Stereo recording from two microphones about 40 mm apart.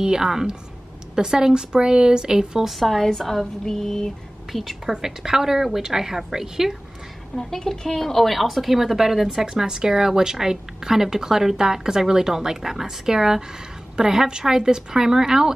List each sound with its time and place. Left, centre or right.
0.0 s a woman's voice: centre
2.8 s speech: centre
4.5 s a woman's voice: centre
4.9 s a woman's voice: centre
7.3 s a woman's voice: centre